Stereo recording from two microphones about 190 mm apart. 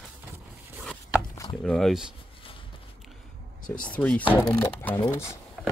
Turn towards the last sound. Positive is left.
turn(degrees=15)  # may be behind; listen again after turning